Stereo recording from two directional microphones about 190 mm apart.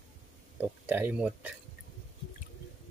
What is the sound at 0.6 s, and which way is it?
Speech, 10° right (ahead or behind).